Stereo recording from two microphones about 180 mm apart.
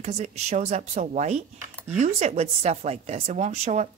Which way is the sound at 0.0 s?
40° right (ahead or behind).